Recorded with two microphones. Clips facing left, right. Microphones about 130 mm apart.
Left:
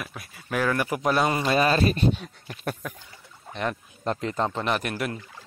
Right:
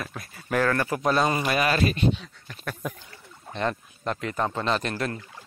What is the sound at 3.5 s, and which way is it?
Speech, 5° left (ahead or behind).